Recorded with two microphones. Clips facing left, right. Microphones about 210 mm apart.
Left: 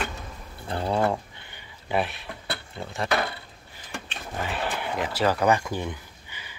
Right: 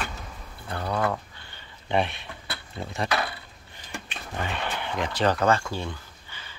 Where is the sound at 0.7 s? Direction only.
25° left (ahead or behind).